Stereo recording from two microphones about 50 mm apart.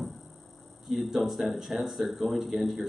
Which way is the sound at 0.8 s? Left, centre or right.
Centre.